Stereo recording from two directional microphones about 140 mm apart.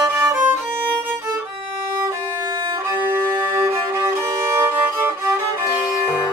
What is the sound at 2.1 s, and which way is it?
Violin, 30° right (ahead or behind).